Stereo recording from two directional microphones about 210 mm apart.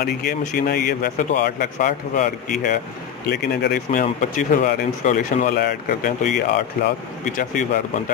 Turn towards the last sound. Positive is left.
turn(degrees=40)  # may be behind; listen again after turning